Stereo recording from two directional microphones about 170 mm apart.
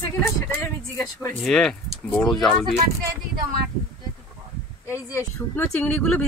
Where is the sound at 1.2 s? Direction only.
5° left (ahead or behind).